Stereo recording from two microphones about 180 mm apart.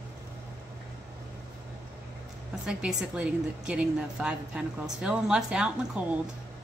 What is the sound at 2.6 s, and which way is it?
A woman's voice, 5° right (ahead or behind).